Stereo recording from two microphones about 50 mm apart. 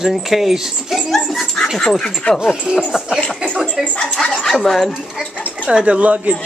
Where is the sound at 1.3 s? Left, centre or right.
Centre.